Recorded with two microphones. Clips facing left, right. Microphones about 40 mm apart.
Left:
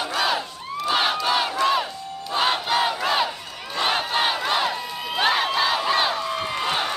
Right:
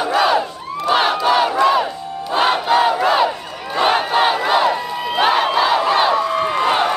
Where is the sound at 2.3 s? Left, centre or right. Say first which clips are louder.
Right 6 dB; right.